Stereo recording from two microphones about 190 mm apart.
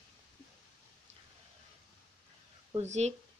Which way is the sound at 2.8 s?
35° right (ahead or behind).